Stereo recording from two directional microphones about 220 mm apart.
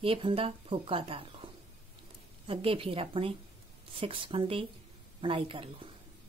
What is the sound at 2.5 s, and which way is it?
A woman's voice, 25° right (ahead or behind).